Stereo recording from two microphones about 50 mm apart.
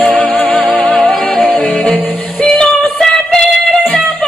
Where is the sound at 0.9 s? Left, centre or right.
Centre.